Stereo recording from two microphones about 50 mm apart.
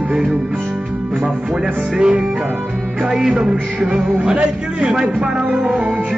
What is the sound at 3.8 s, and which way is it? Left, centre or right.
Music, right.